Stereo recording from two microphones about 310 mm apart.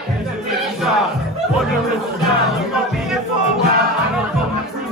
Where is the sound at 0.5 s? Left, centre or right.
Centre.